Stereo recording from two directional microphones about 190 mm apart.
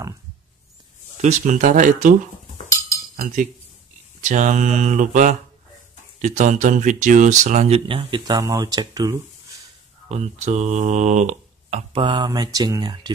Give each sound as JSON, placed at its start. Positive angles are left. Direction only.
{"t": 1.2, "sound": "speech", "side_deg": -40}
{"t": 3.2, "sound": "speech", "side_deg": -40}
{"t": 10.0, "sound": "speech", "side_deg": -35}
{"t": 11.7, "sound": "speech", "side_deg": -25}